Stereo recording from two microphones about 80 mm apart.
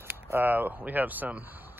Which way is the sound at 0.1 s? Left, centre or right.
Right.